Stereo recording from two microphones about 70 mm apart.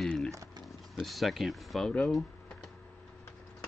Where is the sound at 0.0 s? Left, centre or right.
Centre.